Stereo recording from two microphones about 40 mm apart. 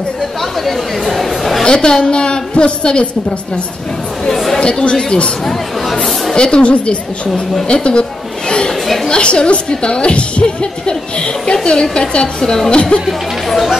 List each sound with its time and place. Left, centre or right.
0.4 s speech: centre
1.6 s a woman's voice: left
4.3 s chatter: centre
4.6 s a woman's voice: left
5.4 s speech: centre
6.3 s a woman's voice: left
8.5 s chatter: centre
8.8 s a sound: centre
9.1 s a woman's voice: left